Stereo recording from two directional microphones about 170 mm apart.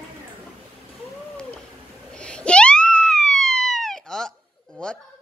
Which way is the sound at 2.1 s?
5° left (ahead or behind).